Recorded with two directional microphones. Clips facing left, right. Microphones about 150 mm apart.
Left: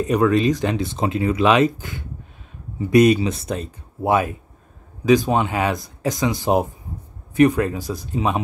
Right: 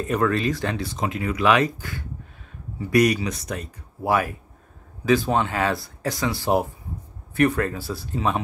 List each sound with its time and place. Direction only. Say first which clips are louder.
0.0 s speech: left 5 dB; 20° left (ahead or behind)